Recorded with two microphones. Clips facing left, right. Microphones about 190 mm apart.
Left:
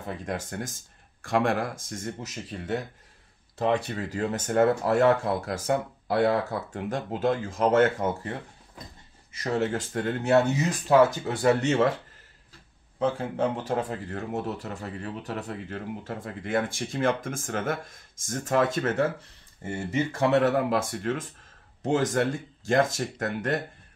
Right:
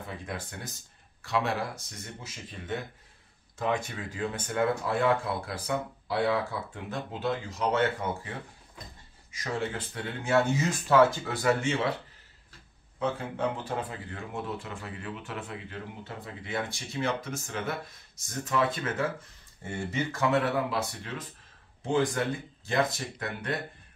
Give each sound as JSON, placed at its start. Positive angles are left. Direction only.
{"t": 0.0, "sound": "a man's voice", "side_deg": 45}
{"t": 9.4, "sound": "a man's voice", "side_deg": 45}
{"t": 11.0, "sound": "speech", "side_deg": 20}
{"t": 11.6, "sound": "a man's voice", "side_deg": 45}
{"t": 13.7, "sound": "a man's voice", "side_deg": 45}
{"t": 20.1, "sound": "a man's voice", "side_deg": 35}